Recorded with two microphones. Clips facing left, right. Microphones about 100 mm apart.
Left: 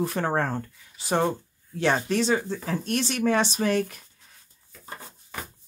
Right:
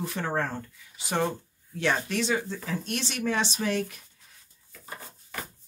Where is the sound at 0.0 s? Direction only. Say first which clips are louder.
Left 4 dB; 50° left (ahead or behind).